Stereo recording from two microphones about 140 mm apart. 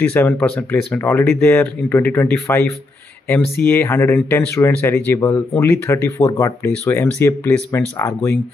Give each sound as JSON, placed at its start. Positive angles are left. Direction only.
{"t": 0.1, "sound": "speech", "side_deg": 15}
{"t": 3.6, "sound": "speech", "side_deg": 15}